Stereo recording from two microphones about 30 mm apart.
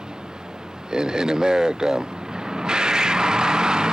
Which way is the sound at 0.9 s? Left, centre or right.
Right.